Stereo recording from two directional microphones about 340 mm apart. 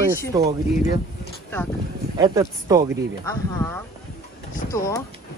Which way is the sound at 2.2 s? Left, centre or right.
Centre.